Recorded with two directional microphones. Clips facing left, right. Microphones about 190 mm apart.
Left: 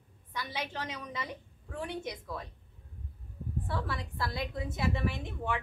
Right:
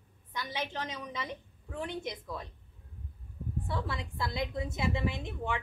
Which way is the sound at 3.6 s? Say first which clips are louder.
Even; 20° right (ahead or behind).